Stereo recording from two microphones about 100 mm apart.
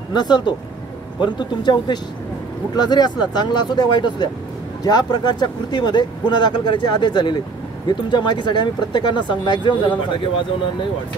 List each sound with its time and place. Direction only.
0.1 s speech: 45° left (ahead or behind)